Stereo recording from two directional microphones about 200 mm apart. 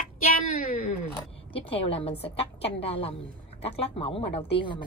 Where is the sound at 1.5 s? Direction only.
30° left (ahead or behind).